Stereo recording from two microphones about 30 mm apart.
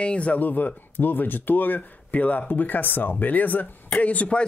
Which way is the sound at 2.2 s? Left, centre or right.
Left.